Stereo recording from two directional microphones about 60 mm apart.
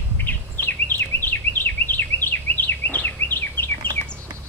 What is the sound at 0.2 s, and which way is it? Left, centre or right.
Bird, left.